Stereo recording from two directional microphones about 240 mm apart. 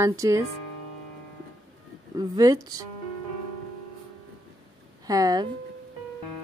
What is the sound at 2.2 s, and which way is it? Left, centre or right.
Speech, centre.